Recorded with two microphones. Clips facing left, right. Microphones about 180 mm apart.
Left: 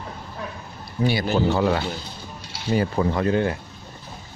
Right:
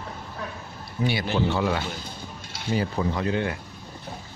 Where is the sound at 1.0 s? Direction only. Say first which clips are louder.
Left 4 dB; 40° left (ahead or behind).